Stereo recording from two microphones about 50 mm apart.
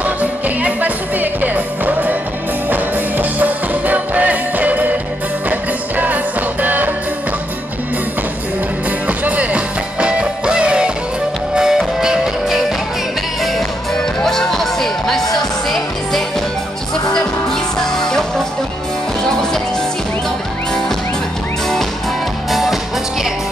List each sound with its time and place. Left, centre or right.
0.0 s music: right
9.0 s music: right; by 12.6 s centre
13.9 s music: centre
16.9 s music: centre
22.5 s music: centre